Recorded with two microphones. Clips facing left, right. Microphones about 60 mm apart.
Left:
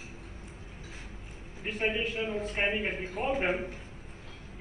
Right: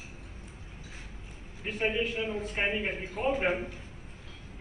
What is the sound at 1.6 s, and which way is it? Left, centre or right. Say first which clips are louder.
A man's voice: right 1 dB; left.